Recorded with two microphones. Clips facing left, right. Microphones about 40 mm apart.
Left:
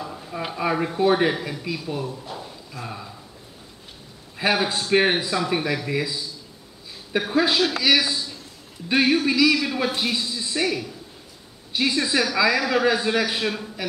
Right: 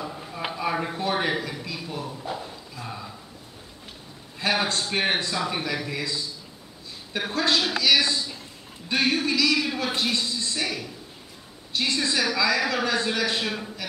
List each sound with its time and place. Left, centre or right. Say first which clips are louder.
0.6 s a sound: left 4 dB; centre
0.9 s a man's voice: left 6 dB; centre
2.0 s a man's voice: right 1 dB; centre
2.7 s speech: left 4 dB; centre
4.4 s a man's voice: left 3 dB; centre